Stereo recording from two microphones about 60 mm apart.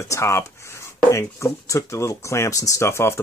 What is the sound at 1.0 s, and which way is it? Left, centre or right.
Speech, left.